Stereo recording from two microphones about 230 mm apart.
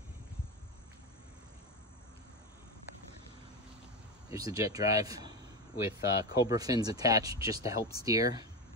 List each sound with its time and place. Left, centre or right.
4.3 s speech: centre